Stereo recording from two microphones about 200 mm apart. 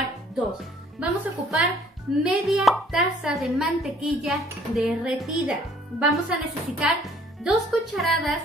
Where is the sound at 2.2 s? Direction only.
Centre (ahead or behind).